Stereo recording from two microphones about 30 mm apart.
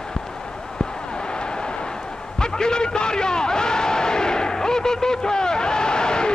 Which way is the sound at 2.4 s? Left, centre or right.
Left.